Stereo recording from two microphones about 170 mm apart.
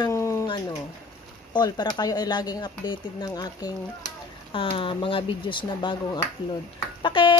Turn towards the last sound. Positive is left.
turn(degrees=30)  # may be behind; listen again after turning